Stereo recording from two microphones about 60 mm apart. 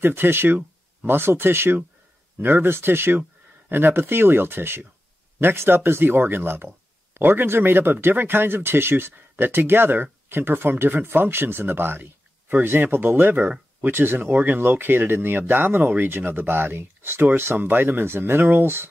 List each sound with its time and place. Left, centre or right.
0.0 s speech: right